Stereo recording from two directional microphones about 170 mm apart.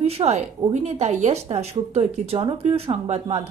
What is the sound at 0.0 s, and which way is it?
A woman's voice, 40° right (ahead or behind).